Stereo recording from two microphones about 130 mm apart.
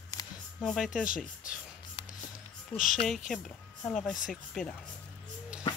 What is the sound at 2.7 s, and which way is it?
Speech, 90° left.